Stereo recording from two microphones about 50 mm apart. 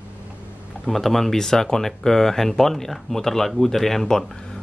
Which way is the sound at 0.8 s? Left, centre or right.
Centre.